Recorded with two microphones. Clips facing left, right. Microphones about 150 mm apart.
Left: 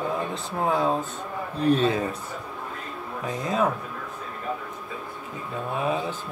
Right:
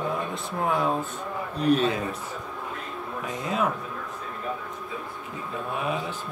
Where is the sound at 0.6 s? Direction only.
30° left (ahead or behind).